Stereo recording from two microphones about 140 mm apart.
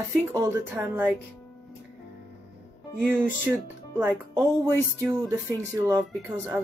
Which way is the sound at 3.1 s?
15° right (ahead or behind).